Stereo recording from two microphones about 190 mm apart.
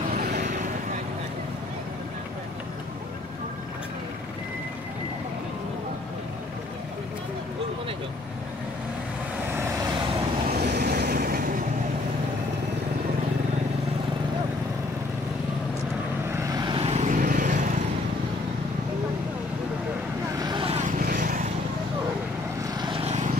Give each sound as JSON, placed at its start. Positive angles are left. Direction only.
{"t": 0.2, "sound": "vehicle", "side_deg": -40}
{"t": 10.6, "sound": "vehicle", "side_deg": -60}
{"t": 16.3, "sound": "vehicle", "side_deg": -20}
{"t": 20.3, "sound": "vehicle", "side_deg": -25}
{"t": 21.0, "sound": "vehicle", "side_deg": -45}
{"t": 22.6, "sound": "vehicle", "side_deg": -25}